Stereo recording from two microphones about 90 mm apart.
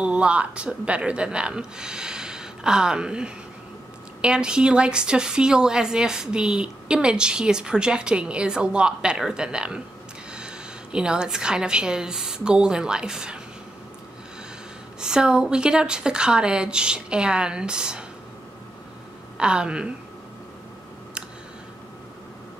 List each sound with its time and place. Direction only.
0.0 s a woman's voice: 10° right (ahead or behind)
15.0 s a woman's voice: 10° right (ahead or behind)
19.3 s a woman's voice: 10° right (ahead or behind)